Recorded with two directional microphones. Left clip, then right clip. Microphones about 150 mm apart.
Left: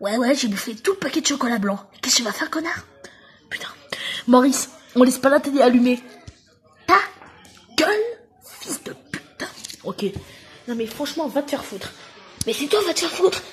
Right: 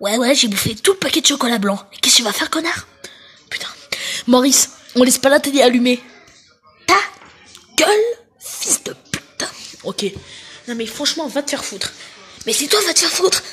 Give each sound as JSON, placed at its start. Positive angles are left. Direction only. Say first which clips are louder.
{"t": 0.0, "sound": "a woman's voice", "louder": "right 5 dB", "side_deg": -25}
{"t": 7.7, "sound": "a child's voice", "louder": "right 5 dB", "side_deg": -25}
{"t": 8.5, "sound": "a sound", "louder": "right 10 dB", "side_deg": -25}
{"t": 9.8, "sound": "speech", "louder": "right 4 dB", "side_deg": -15}